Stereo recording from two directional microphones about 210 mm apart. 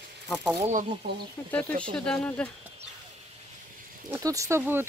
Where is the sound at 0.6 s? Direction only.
35° right (ahead or behind).